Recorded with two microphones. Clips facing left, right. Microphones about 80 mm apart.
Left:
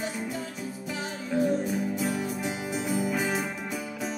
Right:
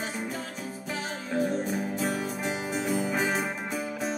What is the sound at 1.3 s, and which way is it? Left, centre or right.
Music, right.